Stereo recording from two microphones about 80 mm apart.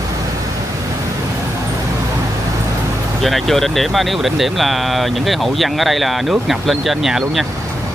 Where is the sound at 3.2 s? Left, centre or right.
Centre.